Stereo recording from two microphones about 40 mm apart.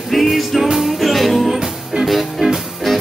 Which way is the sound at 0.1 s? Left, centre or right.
Centre.